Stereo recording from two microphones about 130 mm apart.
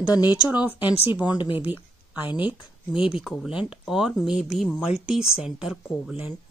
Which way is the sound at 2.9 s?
5° right (ahead or behind).